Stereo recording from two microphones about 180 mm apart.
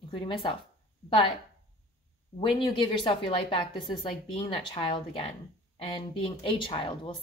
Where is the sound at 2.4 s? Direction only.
30° left (ahead or behind).